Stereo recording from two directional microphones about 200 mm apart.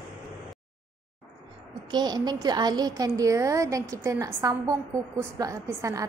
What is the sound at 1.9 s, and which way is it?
A woman's voice, 20° right (ahead or behind).